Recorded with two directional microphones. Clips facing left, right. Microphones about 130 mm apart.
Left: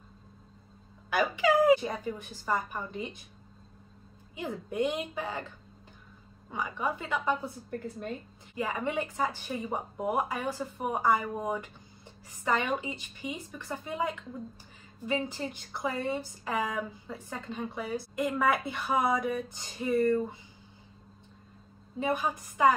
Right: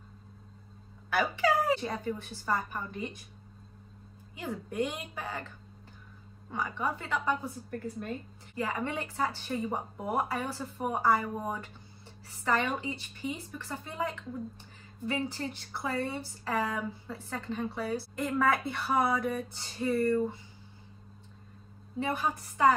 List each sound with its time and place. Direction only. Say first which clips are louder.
1.1 s speech: left 2 dB; 15° left (ahead or behind)
4.4 s a woman's voice: left 2 dB; 20° left (ahead or behind)
6.5 s speech: even; 15° left (ahead or behind)
8.5 s speech: left 2 dB; 15° left (ahead or behind)
22.0 s speech: left 2 dB; 15° left (ahead or behind)